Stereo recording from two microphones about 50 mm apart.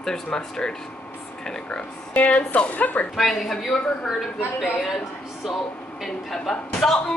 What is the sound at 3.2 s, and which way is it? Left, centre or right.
A woman's voice, centre.